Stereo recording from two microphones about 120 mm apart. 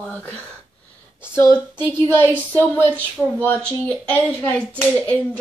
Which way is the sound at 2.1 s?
20° left (ahead or behind).